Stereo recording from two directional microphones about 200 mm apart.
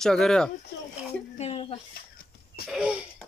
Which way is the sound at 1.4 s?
30° left (ahead or behind).